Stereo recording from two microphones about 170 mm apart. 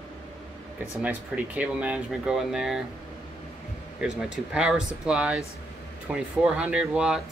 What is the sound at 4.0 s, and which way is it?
Speech, 5° right (ahead or behind).